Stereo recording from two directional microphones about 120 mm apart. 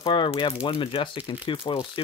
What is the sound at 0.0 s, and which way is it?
Speech, 45° left (ahead or behind).